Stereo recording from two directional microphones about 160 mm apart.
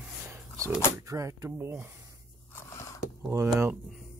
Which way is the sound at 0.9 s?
20° right (ahead or behind).